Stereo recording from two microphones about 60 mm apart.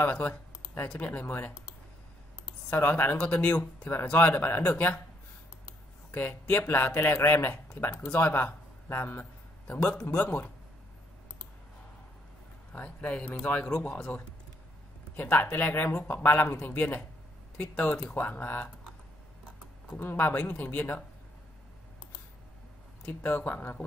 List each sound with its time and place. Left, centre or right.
0.0 s speech: left
2.7 s speech: left
3.2 s speech: centre
3.9 s speech: left
6.5 s speech: left
9.2 s a sound: left
10.1 s speech: left
12.7 s speech: left
16.2 s speech: left
20.0 s speech: left
23.2 s speech: left